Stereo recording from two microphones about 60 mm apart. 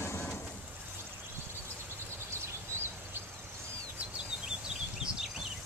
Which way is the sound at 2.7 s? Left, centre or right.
Right.